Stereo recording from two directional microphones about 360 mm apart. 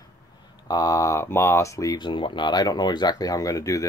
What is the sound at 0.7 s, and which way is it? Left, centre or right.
Speech, centre.